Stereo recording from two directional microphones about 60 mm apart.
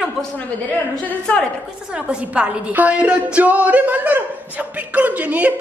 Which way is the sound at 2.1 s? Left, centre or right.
Right.